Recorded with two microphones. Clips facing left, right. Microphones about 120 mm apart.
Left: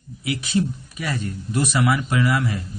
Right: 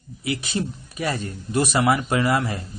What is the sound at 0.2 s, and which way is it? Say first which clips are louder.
Speech: left 3 dB; 35° right (ahead or behind).